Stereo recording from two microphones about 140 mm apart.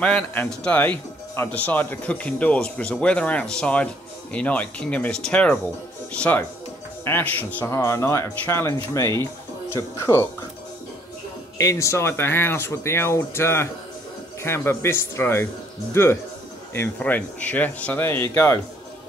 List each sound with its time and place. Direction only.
0.0 s speech: 10° left (ahead or behind)
11.5 s speech: 25° left (ahead or behind)